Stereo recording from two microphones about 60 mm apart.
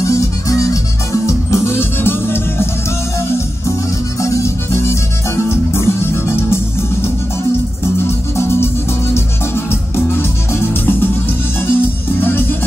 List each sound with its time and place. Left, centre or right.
0.0 s music: left
4.2 s music: left